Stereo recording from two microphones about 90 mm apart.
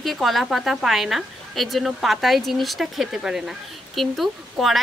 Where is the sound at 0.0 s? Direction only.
Centre (ahead or behind).